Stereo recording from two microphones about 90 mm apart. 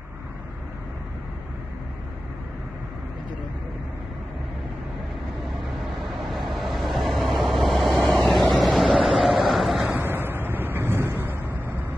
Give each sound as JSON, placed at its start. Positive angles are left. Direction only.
{"t": 5.9, "sound": "vehicle", "side_deg": 0}
{"t": 9.9, "sound": "vehicle", "side_deg": -25}